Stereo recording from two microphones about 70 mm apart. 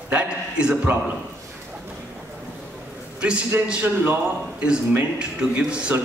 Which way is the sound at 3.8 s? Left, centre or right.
Right.